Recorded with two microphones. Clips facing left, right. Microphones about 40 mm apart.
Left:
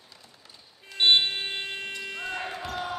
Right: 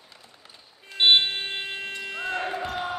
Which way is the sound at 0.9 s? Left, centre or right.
Centre.